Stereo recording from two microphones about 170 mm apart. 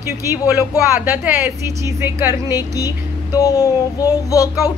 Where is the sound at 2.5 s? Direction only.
20° left (ahead or behind).